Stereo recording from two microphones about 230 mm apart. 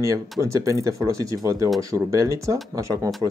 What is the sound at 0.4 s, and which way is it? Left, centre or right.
Speech, centre.